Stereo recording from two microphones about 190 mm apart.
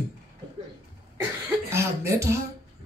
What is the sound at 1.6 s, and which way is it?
Speech, 15° right (ahead or behind).